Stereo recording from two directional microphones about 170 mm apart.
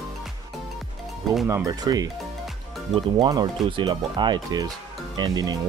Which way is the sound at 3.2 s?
25° right (ahead or behind).